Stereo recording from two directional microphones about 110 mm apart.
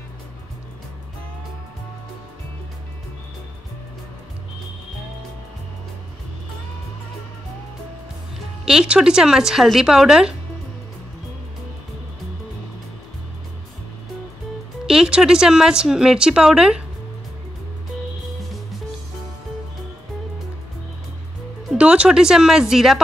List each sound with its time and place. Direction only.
8.6 s speech: 10° right (ahead or behind)
14.9 s speech: 5° right (ahead or behind)
21.7 s a woman's voice: 10° right (ahead or behind)